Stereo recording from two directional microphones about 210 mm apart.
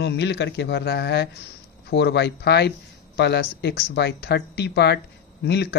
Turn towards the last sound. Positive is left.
turn(degrees=50)  # may be behind; listen again after turning